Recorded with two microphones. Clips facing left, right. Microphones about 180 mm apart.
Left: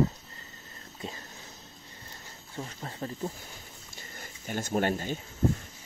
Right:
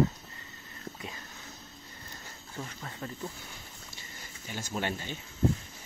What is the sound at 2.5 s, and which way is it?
Snake, 30° left (ahead or behind).